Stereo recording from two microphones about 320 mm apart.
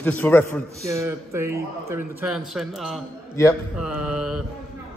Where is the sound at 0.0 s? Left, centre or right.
Centre.